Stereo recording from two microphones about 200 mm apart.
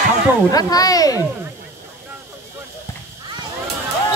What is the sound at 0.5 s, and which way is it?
Speech, 20° left (ahead or behind).